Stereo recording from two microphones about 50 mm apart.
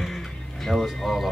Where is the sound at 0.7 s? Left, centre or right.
Centre.